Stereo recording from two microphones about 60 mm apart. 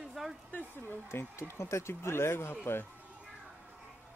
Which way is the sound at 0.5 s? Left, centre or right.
Left.